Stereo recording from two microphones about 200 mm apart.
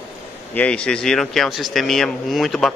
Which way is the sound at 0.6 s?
5° left (ahead or behind).